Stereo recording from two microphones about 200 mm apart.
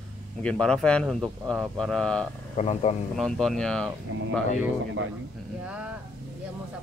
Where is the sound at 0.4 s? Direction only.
5° left (ahead or behind).